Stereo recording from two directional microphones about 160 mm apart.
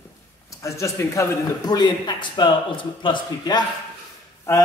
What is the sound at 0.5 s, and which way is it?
A man's voice, 20° left (ahead or behind).